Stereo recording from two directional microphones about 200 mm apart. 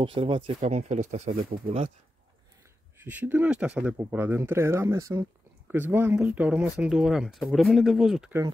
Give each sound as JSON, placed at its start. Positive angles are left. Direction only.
{"t": 0.0, "sound": "speech", "side_deg": -25}
{"t": 3.0, "sound": "speech", "side_deg": -10}